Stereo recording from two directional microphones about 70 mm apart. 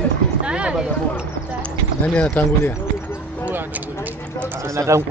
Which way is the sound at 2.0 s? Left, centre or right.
Centre.